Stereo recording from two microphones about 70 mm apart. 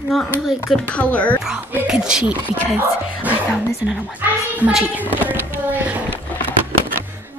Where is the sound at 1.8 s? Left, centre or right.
Centre.